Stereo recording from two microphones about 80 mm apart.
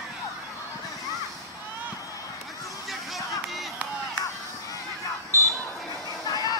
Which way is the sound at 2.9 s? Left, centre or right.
Centre.